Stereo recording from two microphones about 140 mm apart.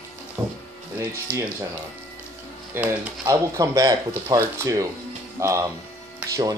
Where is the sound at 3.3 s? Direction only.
25° right (ahead or behind).